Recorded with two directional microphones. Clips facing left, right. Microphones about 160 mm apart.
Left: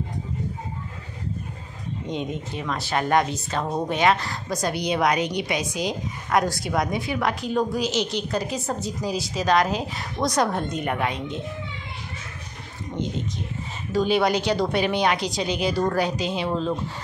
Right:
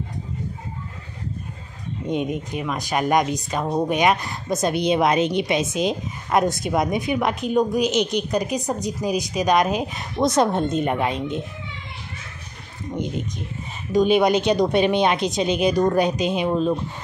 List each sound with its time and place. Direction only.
2.0 s speech: 15° right (ahead or behind)
13.9 s speech: 20° right (ahead or behind)